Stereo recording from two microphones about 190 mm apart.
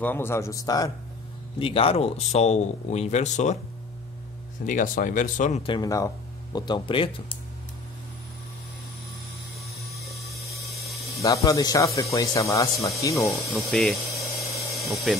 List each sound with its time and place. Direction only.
0.0 s speech: 10° left (ahead or behind)
1.6 s a man's voice: 30° left (ahead or behind)
4.6 s speech: 45° left (ahead or behind); by 7.3 s 25° left (ahead or behind)
11.1 s speech: 15° left (ahead or behind)
13.5 s speech: centre (ahead or behind)
14.1 s a sound: 15° left (ahead or behind)
14.9 s speech: centre (ahead or behind)